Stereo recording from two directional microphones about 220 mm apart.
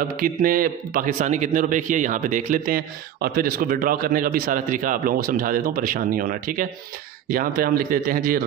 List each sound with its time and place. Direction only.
0.2 s a man's voice: 40° right (ahead or behind)